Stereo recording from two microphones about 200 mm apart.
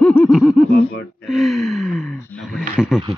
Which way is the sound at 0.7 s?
55° left (ahead or behind).